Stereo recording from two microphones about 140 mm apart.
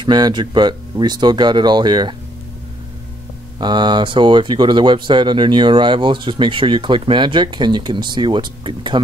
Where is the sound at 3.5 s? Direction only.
35° right (ahead or behind).